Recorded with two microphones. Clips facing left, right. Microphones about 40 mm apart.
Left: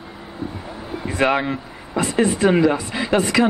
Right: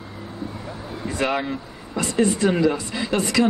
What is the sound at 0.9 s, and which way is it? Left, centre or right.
Speech, left.